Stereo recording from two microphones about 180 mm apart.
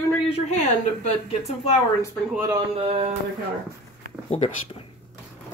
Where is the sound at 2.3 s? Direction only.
10° right (ahead or behind).